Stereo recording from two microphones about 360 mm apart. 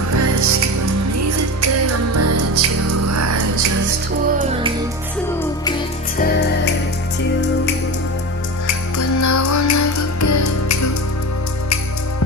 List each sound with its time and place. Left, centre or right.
0.1 s music: right
5.7 s music: left
8.9 s music: left